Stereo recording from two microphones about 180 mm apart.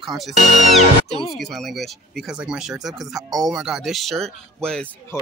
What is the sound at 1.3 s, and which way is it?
Speech, centre (ahead or behind).